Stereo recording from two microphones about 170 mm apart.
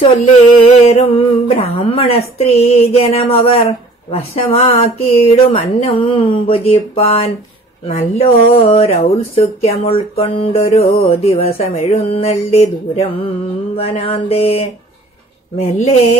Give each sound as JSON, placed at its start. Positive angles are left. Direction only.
{"t": 0.8, "sound": "speech", "side_deg": 35}